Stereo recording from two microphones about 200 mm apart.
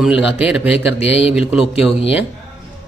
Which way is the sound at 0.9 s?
30° left (ahead or behind).